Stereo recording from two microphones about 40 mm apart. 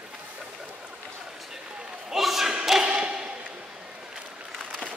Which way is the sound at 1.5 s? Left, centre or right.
Centre.